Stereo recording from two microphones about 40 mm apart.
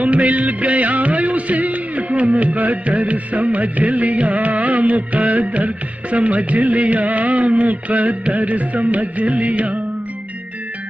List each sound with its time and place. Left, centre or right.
0.0 s music: right